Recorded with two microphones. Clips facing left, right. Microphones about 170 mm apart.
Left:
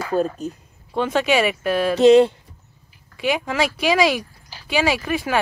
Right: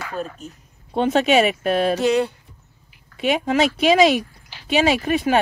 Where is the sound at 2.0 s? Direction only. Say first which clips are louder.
Left 7 dB; 25° left (ahead or behind).